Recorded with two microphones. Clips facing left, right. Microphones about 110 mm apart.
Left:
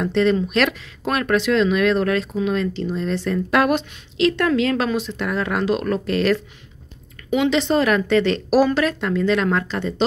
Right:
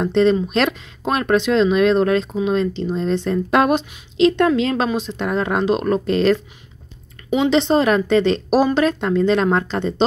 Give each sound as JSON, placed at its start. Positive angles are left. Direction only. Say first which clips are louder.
{"t": 0.0, "sound": "speech", "louder": "right 3 dB", "side_deg": -25}